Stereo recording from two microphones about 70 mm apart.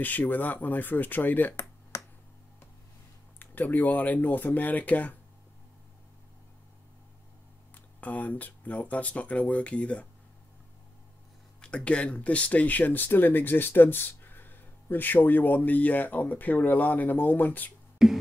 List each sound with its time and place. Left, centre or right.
0.0 s speech: left
3.3 s speech: left
7.7 s speech: left
11.6 s speech: centre
18.0 s beatboxing: centre